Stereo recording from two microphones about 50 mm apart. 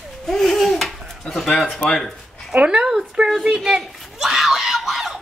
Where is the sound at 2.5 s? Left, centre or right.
Right.